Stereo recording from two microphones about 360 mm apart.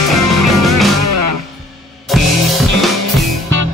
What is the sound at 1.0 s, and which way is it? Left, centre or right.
Music, right.